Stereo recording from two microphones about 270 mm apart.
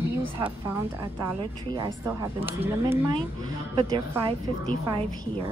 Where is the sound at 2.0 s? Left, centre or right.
Centre.